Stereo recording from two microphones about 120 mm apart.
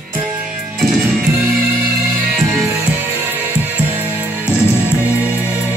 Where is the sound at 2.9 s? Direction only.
15° right (ahead or behind).